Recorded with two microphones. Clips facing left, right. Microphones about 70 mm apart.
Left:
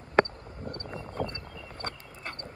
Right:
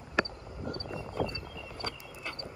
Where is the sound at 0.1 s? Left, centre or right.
Left.